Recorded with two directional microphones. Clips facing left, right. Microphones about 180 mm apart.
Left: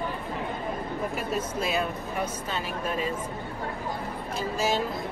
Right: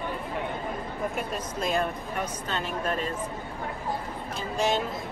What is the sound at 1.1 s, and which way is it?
Speech, 5° left (ahead or behind).